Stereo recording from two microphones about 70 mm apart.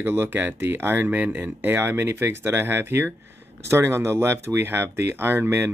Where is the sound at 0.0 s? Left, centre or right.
Right.